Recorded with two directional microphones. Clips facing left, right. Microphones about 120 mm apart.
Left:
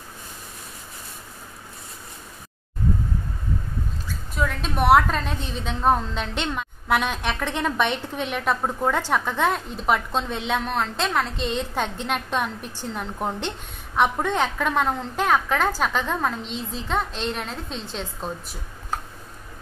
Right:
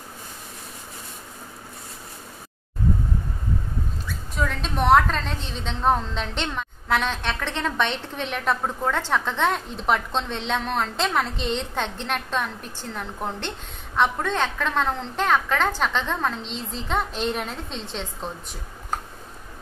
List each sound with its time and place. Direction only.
4.4 s a woman's voice: 5° left (ahead or behind)